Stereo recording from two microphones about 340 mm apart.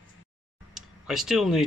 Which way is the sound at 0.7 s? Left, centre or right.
Centre.